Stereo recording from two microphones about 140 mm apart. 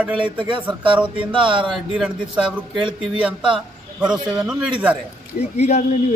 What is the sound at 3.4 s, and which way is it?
Speech, 35° right (ahead or behind).